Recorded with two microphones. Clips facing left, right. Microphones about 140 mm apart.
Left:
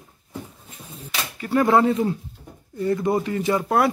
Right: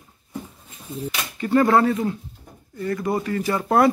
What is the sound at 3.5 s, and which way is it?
Speech, 5° left (ahead or behind).